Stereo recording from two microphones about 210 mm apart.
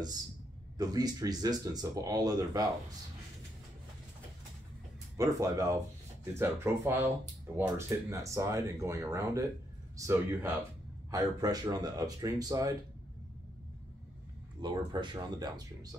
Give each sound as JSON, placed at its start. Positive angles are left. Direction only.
{"t": 0.7, "sound": "speech", "side_deg": -20}
{"t": 5.1, "sound": "speech", "side_deg": -15}
{"t": 14.6, "sound": "speech", "side_deg": -20}